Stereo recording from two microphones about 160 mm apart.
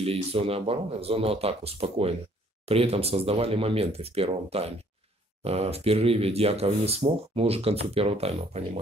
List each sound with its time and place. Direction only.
0.0 s speech: 40° right (ahead or behind)